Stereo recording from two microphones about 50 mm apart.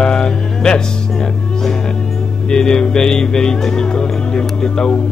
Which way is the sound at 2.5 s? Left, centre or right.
Centre.